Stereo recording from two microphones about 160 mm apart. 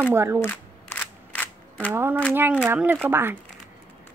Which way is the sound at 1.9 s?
15° right (ahead or behind).